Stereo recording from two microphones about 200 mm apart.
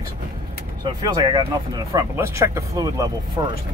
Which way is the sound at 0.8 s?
20° right (ahead or behind).